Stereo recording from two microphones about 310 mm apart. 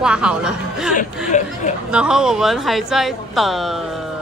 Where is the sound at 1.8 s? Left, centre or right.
Centre.